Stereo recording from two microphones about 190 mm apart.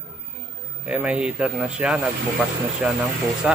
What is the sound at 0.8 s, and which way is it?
Speech, 5° right (ahead or behind).